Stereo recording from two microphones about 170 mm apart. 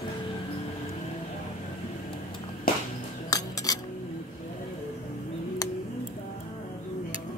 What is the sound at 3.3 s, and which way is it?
Cutlery, 20° left (ahead or behind).